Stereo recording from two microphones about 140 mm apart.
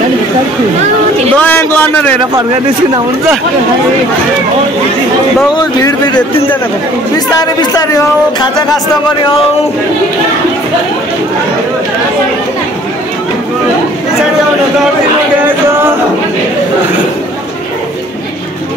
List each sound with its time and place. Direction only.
1.3 s a man's voice: 15° left (ahead or behind)
5.5 s speech: 25° left (ahead or behind)
7.3 s speech: 25° left (ahead or behind)